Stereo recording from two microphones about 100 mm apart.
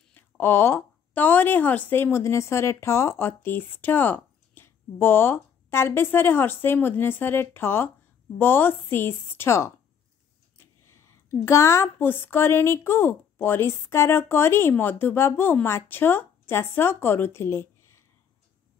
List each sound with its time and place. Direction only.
0.1 s a woman's voice: 20° left (ahead or behind)
10.6 s a sound: 25° left (ahead or behind)
11.4 s a woman's voice: 30° left (ahead or behind)